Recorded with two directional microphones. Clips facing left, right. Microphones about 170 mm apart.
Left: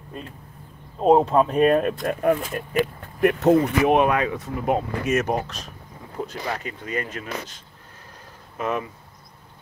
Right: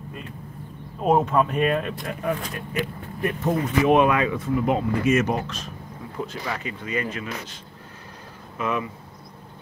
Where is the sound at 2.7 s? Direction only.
70° left (ahead or behind).